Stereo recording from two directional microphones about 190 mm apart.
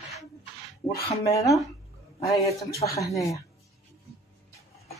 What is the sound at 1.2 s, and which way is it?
Speech, 15° left (ahead or behind).